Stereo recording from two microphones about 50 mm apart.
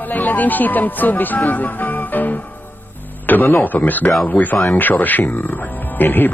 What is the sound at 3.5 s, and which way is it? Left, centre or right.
Speech, left.